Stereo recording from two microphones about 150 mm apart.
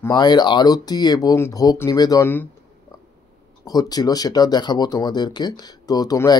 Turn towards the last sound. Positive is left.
turn(degrees=25)  # may be behind; listen again after turning